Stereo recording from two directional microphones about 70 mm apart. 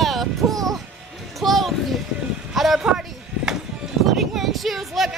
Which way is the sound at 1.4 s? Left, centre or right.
Centre.